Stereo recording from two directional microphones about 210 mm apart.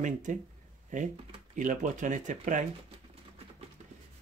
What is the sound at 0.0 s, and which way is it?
Speech, 35° right (ahead or behind).